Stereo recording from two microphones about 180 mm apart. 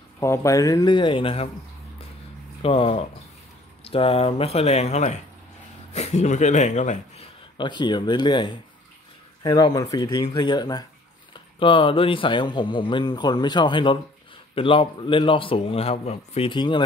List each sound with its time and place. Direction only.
0.2 s speech: 15° left (ahead or behind); by 1.5 s 30° left (ahead or behind)
2.6 s speech: 30° left (ahead or behind)
7.5 s speech: 25° left (ahead or behind)